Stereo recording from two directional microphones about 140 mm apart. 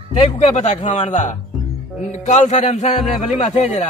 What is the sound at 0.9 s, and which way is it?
Music, 55° left (ahead or behind).